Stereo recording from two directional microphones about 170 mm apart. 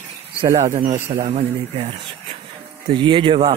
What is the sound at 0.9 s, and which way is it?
A man's voice, 45° right (ahead or behind).